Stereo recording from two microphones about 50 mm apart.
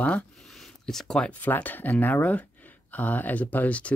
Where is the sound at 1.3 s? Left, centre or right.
Left.